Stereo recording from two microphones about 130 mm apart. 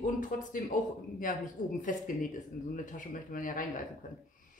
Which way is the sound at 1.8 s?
80° left.